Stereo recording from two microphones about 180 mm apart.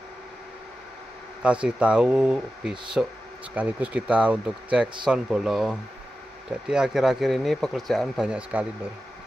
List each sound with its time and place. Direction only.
1.4 s speech: 5° right (ahead or behind)